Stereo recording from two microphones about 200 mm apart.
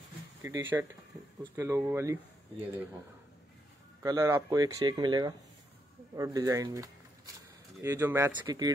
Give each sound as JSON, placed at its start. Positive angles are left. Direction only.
{"t": 0.4, "sound": "speech", "side_deg": -10}
{"t": 4.0, "sound": "speech", "side_deg": -15}